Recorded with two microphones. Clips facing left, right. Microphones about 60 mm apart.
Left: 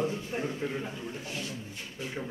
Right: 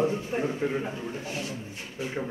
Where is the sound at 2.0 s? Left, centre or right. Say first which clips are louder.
Right 5 dB; right.